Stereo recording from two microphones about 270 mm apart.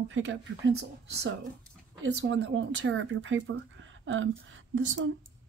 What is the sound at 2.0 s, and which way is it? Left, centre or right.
Speech, right.